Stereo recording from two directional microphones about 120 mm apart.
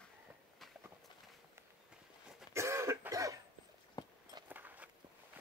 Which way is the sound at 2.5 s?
25° right (ahead or behind).